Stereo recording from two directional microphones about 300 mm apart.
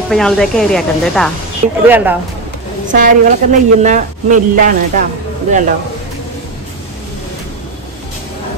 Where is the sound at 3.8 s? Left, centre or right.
Right.